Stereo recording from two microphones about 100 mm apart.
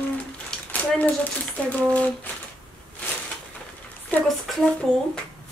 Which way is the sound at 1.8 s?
15° left (ahead or behind).